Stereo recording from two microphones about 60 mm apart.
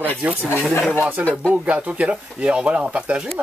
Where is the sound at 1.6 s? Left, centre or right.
Right.